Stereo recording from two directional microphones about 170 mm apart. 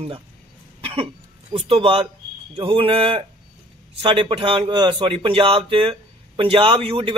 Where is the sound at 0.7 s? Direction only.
30° right (ahead or behind).